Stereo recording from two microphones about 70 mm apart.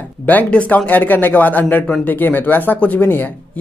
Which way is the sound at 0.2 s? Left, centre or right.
Left.